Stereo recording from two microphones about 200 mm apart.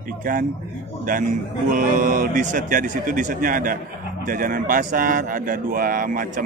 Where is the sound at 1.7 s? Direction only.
40° right (ahead or behind).